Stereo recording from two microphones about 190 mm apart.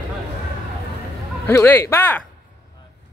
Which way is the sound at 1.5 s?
10° left (ahead or behind).